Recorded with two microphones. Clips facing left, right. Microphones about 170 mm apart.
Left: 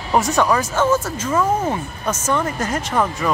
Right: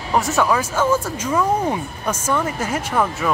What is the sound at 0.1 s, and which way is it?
Speech, 5° right (ahead or behind).